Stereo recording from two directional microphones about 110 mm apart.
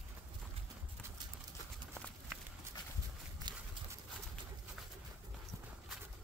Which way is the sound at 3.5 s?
45° right (ahead or behind).